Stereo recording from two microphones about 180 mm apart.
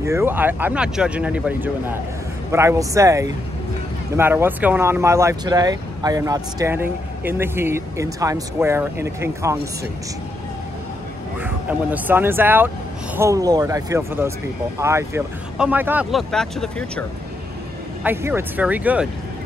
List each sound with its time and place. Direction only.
0.0 s speech: 15° right (ahead or behind)
11.4 s speech: 10° right (ahead or behind)
18.0 s speech: 15° right (ahead or behind)